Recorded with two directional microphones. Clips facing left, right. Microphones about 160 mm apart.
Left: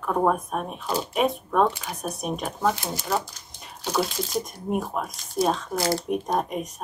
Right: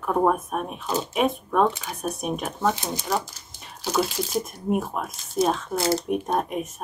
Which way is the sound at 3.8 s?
5° right (ahead or behind).